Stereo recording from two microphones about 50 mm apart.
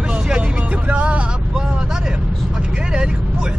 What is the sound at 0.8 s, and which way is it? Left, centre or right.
Vehicle, right.